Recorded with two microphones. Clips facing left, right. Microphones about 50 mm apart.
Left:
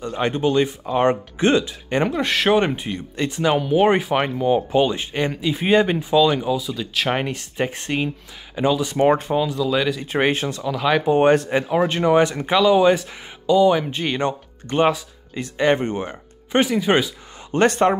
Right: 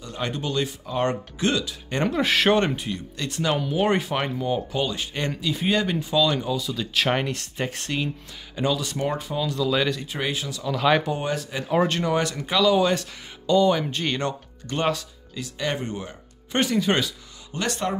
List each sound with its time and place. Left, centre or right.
0.0 s speech: left
2.0 s speech: centre
2.6 s speech: left; by 7.2 s centre
7.2 s speech: centre
9.0 s speech: left
9.6 s speech: centre
10.0 s speech: left
10.7 s speech: centre
11.1 s speech: left
11.9 s speech: left
16.5 s speech: centre
17.5 s speech: left